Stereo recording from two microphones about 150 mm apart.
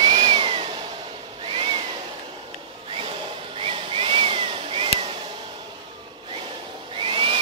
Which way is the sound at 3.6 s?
35° right (ahead or behind).